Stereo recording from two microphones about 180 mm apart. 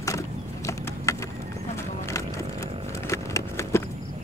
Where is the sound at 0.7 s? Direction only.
15° left (ahead or behind).